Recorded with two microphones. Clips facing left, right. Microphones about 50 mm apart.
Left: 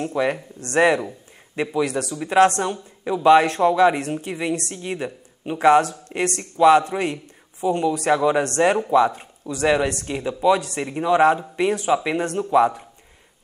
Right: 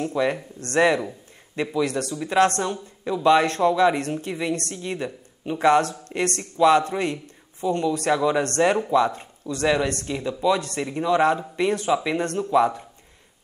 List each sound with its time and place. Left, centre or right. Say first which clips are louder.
0.0 s speech: left 1 dB; centre